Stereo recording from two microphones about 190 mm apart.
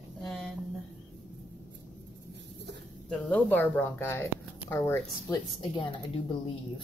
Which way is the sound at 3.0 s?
5° left (ahead or behind).